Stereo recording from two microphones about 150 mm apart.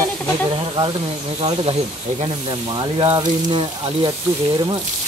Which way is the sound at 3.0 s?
35° right (ahead or behind).